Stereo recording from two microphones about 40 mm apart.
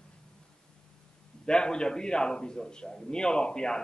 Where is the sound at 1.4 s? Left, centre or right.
Centre.